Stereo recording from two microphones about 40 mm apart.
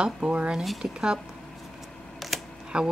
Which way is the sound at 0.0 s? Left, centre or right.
Right.